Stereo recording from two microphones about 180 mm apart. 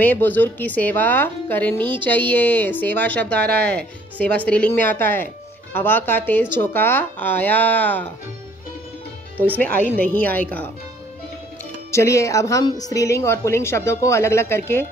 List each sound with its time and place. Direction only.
0.0 s a woman's voice: 10° left (ahead or behind)
9.6 s a woman's voice: 10° left (ahead or behind)
11.9 s a woman's voice: 15° left (ahead or behind)